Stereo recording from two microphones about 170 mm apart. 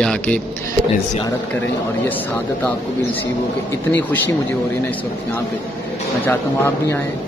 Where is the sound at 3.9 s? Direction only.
10° left (ahead or behind).